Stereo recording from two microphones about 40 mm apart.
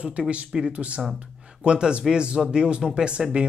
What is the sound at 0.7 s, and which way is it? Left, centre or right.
Speech, right.